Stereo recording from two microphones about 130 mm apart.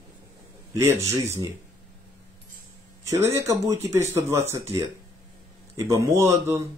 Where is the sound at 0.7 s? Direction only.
20° right (ahead or behind).